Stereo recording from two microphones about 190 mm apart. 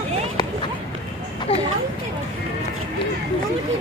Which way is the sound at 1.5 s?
30° left (ahead or behind).